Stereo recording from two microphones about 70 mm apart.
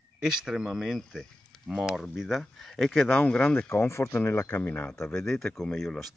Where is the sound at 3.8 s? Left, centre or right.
Left.